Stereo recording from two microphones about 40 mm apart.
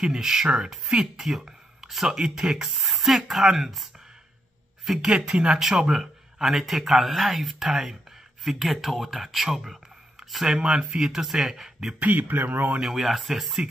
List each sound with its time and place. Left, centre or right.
0.0 s a man's voice: centre
2.1 s a man's voice: centre
5.0 s a man's voice: centre
12.0 s speech: right
13.0 s speech: centre